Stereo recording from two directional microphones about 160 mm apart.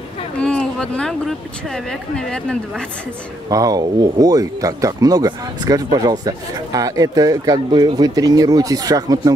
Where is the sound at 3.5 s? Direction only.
20° right (ahead or behind).